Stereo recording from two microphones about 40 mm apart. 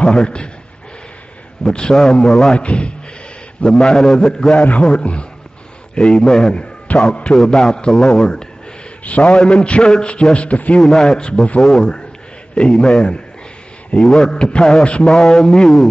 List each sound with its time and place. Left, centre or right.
0.0 s a man's voice: left
1.6 s a man's voice: left
2.6 s a man's voice: left
3.7 s a man's voice: centre
4.6 s a man's voice: left
5.9 s a man's voice: centre
6.9 s a man's voice: left
7.3 s a man's voice: centre
9.0 s a man's voice: left
10.8 s a man's voice: centre
13.9 s a man's voice: centre
15.1 s a man's voice: centre